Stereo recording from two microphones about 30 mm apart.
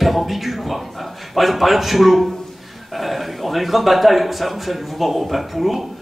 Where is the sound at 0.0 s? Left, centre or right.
Centre.